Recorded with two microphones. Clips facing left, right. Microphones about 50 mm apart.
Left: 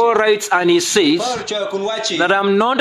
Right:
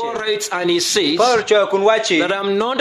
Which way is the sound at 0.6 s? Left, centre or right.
Centre.